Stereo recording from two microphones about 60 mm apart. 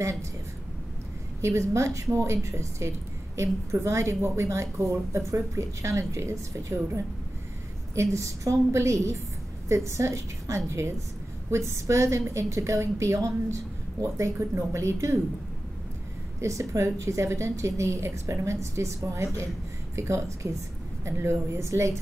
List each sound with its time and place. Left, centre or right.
1.4 s a woman's voice: right
16.3 s a woman's voice: right